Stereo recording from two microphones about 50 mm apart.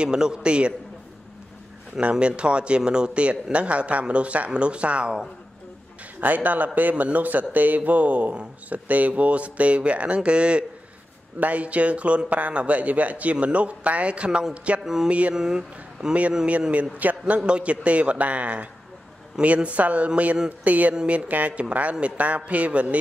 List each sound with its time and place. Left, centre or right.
0.0 s speech: centre
2.0 s speech: right
6.2 s a man's voice: right
14.8 s music: centre
15.0 s speech: right
15.3 s speech: centre
16.9 s a man's voice: right
17.4 s a man's voice: right
20.9 s music: centre
21.3 s speech: right